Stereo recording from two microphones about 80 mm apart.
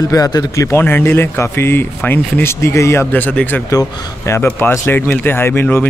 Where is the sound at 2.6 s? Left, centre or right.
Left.